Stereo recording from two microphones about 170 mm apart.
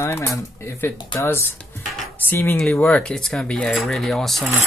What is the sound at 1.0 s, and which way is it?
Speech, 25° left (ahead or behind).